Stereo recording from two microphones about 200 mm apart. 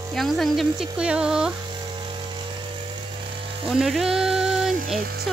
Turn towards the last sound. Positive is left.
turn(degrees=0)  # may be behind; listen again after turning